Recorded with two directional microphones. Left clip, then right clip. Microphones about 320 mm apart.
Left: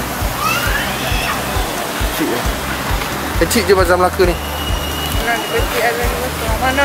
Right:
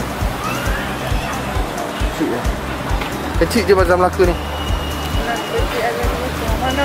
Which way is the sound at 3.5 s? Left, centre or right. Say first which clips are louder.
Left 1 dB; centre.